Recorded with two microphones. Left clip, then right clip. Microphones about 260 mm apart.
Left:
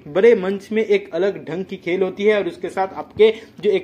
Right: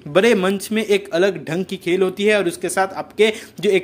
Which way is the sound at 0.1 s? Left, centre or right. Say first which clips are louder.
Left 1 dB; right.